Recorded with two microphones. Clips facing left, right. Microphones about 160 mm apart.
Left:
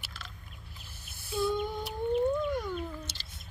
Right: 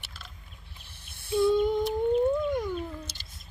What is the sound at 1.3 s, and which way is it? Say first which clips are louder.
Lullaby: right 8 dB; 25° right (ahead or behind).